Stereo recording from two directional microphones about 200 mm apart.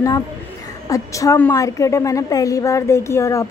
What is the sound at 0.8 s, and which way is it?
A woman's voice, 15° left (ahead or behind).